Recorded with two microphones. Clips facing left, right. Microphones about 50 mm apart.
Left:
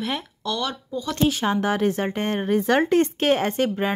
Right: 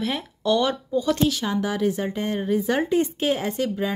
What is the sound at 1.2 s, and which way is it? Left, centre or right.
A woman's voice, left.